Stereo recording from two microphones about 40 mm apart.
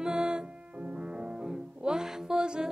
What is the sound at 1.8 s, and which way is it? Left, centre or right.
Music, centre.